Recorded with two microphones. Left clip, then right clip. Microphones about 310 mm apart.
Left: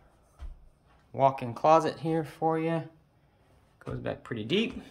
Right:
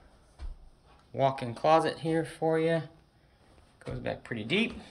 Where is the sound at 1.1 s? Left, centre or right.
Centre.